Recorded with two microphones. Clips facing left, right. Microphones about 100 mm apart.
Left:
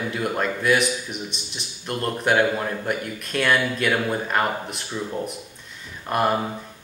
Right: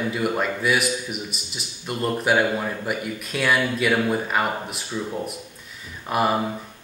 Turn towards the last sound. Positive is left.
turn(degrees=-5)  # may be behind; listen again after turning